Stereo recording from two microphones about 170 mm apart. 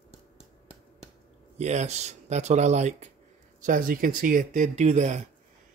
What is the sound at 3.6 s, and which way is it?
Speech, 50° right (ahead or behind).